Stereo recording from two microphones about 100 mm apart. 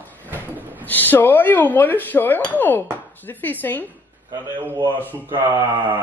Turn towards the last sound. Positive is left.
turn(degrees=-25)  # may be behind; listen again after turning